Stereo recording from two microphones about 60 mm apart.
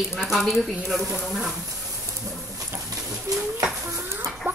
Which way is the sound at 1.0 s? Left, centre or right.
Centre.